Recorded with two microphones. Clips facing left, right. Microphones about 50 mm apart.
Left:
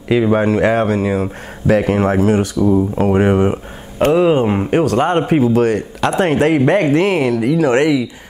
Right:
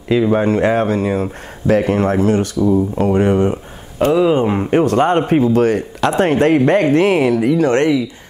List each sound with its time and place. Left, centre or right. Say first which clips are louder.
0.1 s speech: even; centre
0.5 s speech: left 1 dB; centre
7.6 s speech: left 3 dB; centre